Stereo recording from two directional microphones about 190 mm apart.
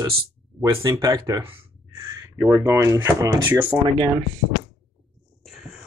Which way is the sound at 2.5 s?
15° right (ahead or behind).